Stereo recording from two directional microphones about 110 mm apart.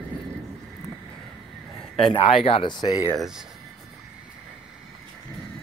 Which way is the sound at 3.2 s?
5° right (ahead or behind).